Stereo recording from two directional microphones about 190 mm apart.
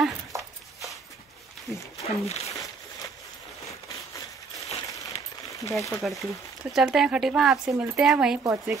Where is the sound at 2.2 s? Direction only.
35° left (ahead or behind).